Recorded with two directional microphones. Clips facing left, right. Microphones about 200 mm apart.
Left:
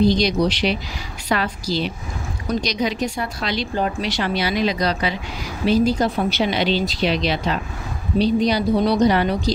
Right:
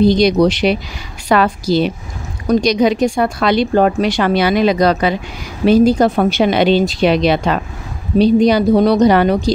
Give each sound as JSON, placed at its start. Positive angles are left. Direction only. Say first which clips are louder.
{"t": 0.0, "sound": "speech", "louder": "right 6 dB", "side_deg": -55}